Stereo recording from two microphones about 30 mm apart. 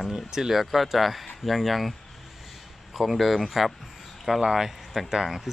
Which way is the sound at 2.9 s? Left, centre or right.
Centre.